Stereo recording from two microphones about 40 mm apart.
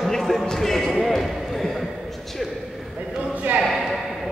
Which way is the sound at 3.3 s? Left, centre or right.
Right.